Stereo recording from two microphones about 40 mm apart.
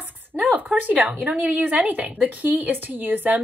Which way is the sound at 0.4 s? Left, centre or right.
Right.